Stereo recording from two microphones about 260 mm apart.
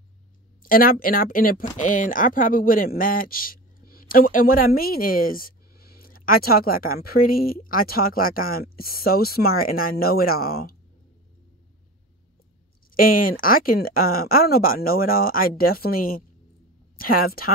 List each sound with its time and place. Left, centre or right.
0.7 s speech: left
12.9 s speech: left